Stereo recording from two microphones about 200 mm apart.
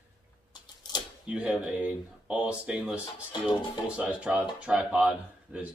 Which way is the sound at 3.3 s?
25° left (ahead or behind).